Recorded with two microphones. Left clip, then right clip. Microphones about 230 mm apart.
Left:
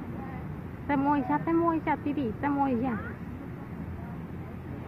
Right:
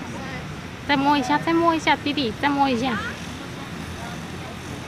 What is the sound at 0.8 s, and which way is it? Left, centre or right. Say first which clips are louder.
Speech: right 7 dB; right.